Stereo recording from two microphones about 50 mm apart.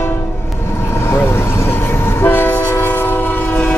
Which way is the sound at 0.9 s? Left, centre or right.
Left.